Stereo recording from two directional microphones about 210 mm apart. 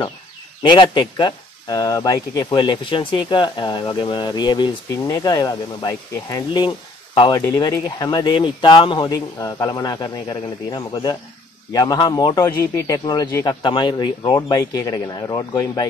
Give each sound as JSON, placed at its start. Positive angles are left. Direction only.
{"t": 0.6, "sound": "speech", "side_deg": 20}